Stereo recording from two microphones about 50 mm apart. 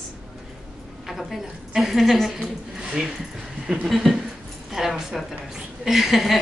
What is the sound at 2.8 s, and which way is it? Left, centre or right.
Speech, centre.